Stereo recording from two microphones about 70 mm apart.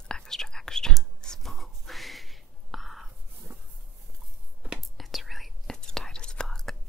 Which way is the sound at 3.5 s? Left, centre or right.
Right.